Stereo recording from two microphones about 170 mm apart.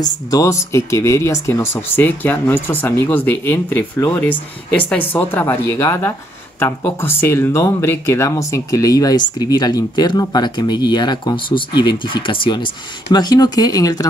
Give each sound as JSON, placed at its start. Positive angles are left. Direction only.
{"t": 0.0, "sound": "speech", "side_deg": 20}